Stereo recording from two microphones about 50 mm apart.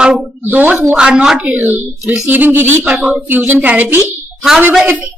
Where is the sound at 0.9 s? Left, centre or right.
Centre.